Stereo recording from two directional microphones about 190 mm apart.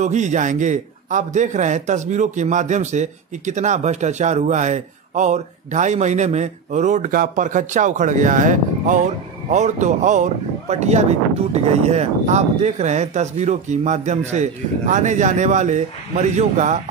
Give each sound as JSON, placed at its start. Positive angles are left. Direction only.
{"t": 0.0, "sound": "a man's voice", "side_deg": -40}